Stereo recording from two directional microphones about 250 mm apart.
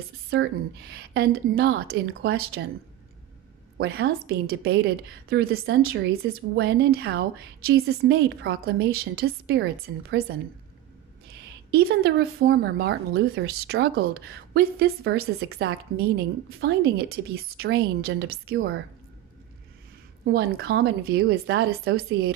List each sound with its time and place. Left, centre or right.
0.3 s a woman's voice: right
3.7 s a woman's voice: right
11.7 s a woman's voice: right
20.2 s a woman's voice: right